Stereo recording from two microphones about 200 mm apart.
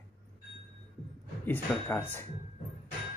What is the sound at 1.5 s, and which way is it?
Speech, 10° left (ahead or behind).